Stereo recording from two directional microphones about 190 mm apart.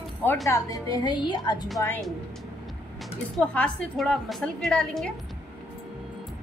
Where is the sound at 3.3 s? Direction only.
5° left (ahead or behind).